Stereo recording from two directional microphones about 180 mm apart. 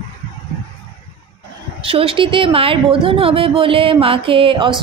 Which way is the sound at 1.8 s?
30° right (ahead or behind).